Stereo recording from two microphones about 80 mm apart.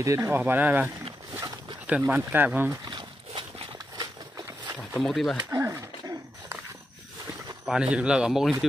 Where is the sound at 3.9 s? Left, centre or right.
Right.